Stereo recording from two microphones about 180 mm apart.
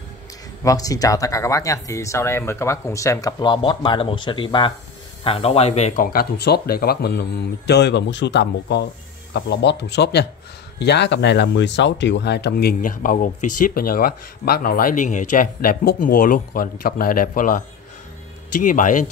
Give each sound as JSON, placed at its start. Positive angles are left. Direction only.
{"t": 0.7, "sound": "speech", "side_deg": 20}
{"t": 6.0, "sound": "speech", "side_deg": 60}
{"t": 18.6, "sound": "speech", "side_deg": 45}